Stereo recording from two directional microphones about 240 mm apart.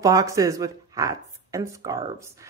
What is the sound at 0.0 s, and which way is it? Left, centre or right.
Speech, centre.